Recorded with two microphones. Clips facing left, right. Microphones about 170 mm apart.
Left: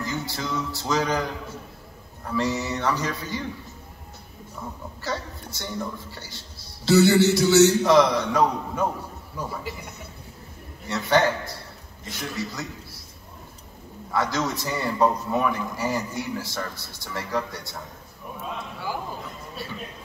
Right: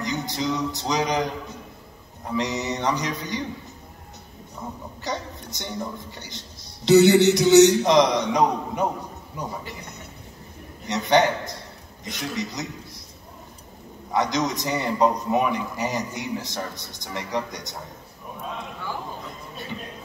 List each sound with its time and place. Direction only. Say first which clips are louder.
0.0 s a woman's voice: right 3 dB; 20° right (ahead or behind)
5.0 s a woman's voice: even; 20° right (ahead or behind)
10.9 s a woman's voice: right 2 dB; 20° right (ahead or behind)
14.1 s a woman's voice: right 2 dB; 20° right (ahead or behind)